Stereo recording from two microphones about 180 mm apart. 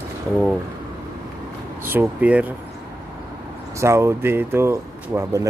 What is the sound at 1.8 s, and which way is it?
Speech, 10° right (ahead or behind).